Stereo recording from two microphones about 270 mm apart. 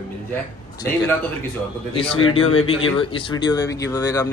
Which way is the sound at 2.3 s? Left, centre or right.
Left.